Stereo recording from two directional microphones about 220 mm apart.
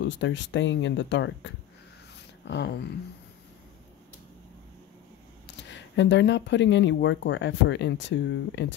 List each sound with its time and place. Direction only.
0.0 s speech: 55° left (ahead or behind)
2.4 s a sound: 55° left (ahead or behind)
5.5 s speech: 55° left (ahead or behind)